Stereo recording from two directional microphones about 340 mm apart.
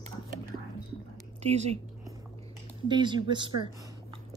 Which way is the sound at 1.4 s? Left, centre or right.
Centre.